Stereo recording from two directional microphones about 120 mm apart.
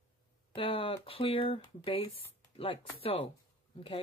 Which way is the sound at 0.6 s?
50° left (ahead or behind).